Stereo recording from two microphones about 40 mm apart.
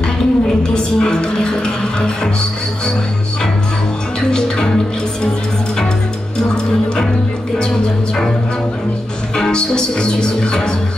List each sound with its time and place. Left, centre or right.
0.0 s music: centre
4.3 s music: centre
6.3 s music: centre
9.3 s music: centre